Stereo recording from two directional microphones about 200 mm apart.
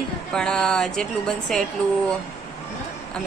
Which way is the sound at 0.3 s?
5° left (ahead or behind).